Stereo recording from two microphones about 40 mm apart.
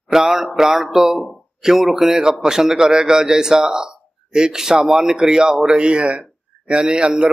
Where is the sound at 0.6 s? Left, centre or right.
Centre.